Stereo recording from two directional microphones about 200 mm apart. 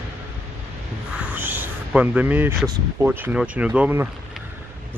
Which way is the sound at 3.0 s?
10° right (ahead or behind).